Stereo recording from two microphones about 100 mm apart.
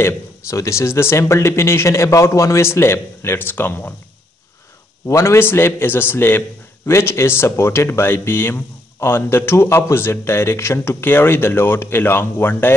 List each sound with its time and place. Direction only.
0.0 s speech: 30° left (ahead or behind)
5.0 s speech: 30° left (ahead or behind)